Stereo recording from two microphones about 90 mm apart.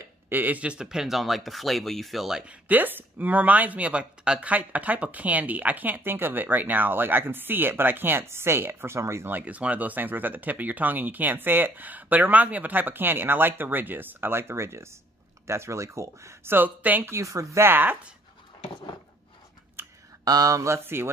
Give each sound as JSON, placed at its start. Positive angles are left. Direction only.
{"t": 0.0, "sound": "speech", "side_deg": -20}
{"t": 2.7, "sound": "speech", "side_deg": -20}
{"t": 9.4, "sound": "speech", "side_deg": -15}
{"t": 16.5, "sound": "speech", "side_deg": -20}
{"t": 17.1, "sound": "speech", "side_deg": -35}
{"t": 19.8, "sound": "a sound", "side_deg": -25}
{"t": 20.2, "sound": "speech", "side_deg": -40}